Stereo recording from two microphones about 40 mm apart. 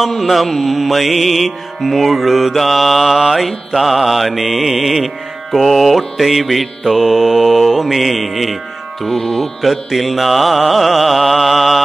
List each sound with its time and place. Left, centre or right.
0.0 s music: centre